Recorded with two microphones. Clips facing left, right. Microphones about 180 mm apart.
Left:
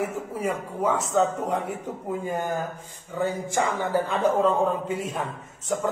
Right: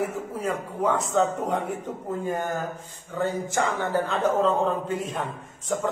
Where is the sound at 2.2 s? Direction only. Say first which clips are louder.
Even; 15° left (ahead or behind).